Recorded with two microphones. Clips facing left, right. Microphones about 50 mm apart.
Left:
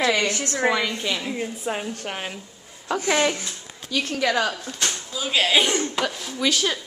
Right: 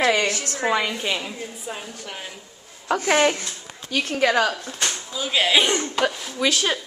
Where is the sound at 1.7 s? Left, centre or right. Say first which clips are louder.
Left 5 dB; left.